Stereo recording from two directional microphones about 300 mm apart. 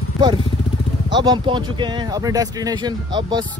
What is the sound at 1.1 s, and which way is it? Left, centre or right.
Speech, centre.